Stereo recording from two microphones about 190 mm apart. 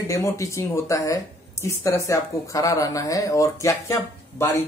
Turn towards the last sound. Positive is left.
turn(degrees=10)  # may be behind; listen again after turning